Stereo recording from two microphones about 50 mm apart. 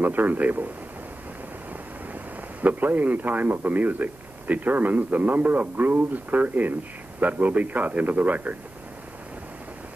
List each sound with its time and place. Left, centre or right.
0.0 s a man's voice: right
2.6 s a man's voice: right